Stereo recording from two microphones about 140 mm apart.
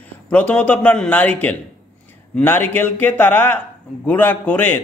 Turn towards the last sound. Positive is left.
turn(degrees=15)  # may be behind; listen again after turning